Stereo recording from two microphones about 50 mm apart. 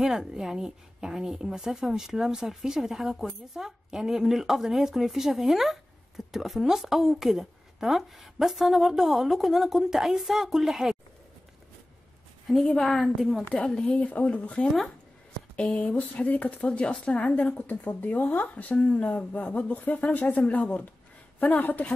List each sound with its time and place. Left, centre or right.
0.0 s a woman's voice: centre
12.8 s a woman's voice: centre
13.5 s speech: centre
13.9 s a woman's voice: left